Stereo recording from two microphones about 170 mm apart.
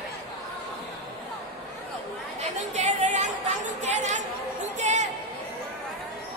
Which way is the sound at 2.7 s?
40° right (ahead or behind).